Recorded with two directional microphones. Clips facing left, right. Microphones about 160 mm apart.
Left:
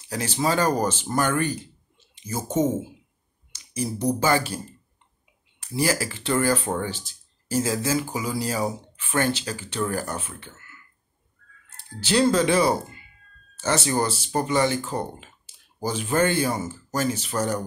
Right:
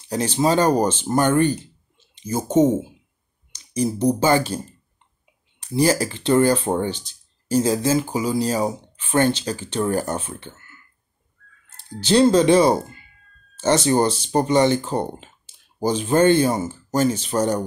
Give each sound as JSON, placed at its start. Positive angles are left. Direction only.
{"t": 0.1, "sound": "speech", "side_deg": -20}
{"t": 3.7, "sound": "speech", "side_deg": -20}
{"t": 5.8, "sound": "speech", "side_deg": -25}
{"t": 12.1, "sound": "speech", "side_deg": -25}